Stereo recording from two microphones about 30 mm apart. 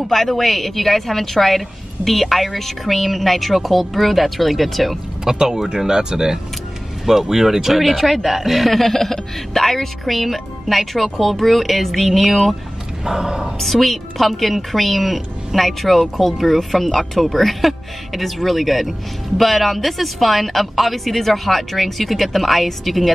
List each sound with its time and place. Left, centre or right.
0.1 s a woman's voice: centre
5.2 s a woman's voice: right; by 12.5 s centre
13.0 s speech: right
13.6 s a woman's voice: centre